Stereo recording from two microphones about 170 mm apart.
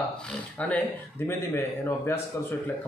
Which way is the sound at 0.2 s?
5° left (ahead or behind).